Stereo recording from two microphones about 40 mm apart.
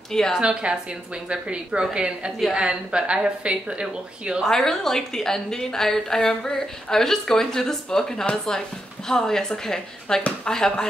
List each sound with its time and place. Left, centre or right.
0.4 s a woman's voice: right
4.5 s a woman's voice: centre